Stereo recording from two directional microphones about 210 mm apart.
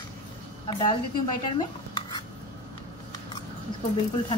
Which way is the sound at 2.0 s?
20° left (ahead or behind).